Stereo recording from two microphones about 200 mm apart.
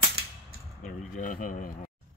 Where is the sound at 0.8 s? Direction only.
40° left (ahead or behind).